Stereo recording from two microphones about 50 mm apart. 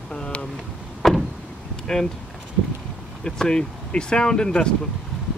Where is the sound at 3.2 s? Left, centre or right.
Centre.